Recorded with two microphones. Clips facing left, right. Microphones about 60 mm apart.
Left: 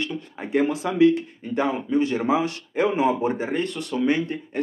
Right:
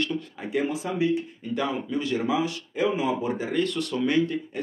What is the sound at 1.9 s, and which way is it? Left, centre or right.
Speech, left.